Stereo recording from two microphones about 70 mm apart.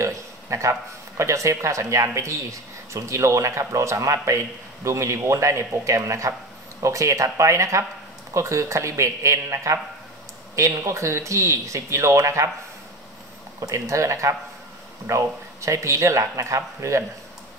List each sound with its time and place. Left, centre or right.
0.0 s speech: right
13.6 s speech: right